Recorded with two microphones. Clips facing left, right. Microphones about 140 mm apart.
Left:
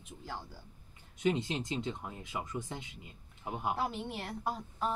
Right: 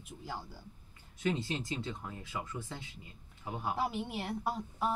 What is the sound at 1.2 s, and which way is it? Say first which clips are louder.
Speech: left 2 dB; 20° left (ahead or behind).